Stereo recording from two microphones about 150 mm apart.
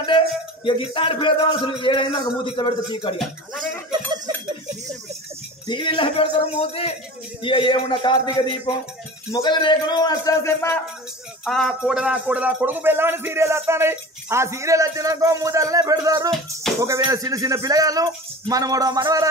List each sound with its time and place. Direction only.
0.7 s a man's voice: 35° left (ahead or behind)
5.7 s a man's voice: 35° left (ahead or behind); by 10.8 s 20° left (ahead or behind)
11.4 s a sound: centre (ahead or behind); by 16.3 s 25° right (ahead or behind)
16.8 s speech: 20° right (ahead or behind)